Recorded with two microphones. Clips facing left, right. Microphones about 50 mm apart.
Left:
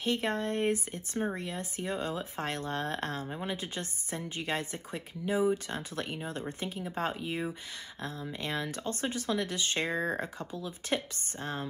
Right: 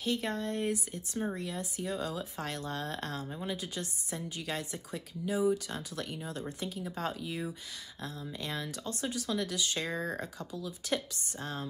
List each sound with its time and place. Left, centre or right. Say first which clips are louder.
0.0 s speech: left 2 dB; left